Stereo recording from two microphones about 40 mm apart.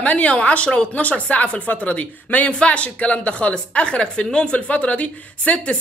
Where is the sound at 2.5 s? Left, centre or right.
Left.